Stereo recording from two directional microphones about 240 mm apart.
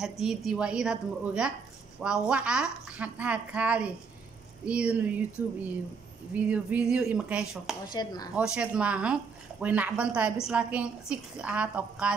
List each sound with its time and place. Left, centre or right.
0.0 s speech: centre
6.3 s speech: centre
7.9 s speech: centre
8.4 s speech: centre